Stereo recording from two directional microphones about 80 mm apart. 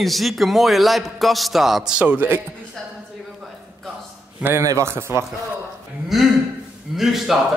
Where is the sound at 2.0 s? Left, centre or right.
Right.